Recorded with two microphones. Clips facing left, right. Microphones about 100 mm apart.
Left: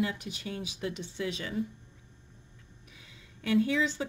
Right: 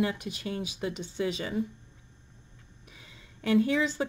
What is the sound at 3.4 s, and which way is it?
Speech, 40° right (ahead or behind).